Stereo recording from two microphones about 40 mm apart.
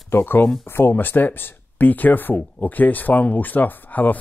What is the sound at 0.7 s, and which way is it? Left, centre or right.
Speech, left.